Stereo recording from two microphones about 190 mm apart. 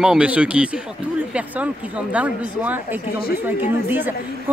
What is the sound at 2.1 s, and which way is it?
A man's voice, 10° right (ahead or behind).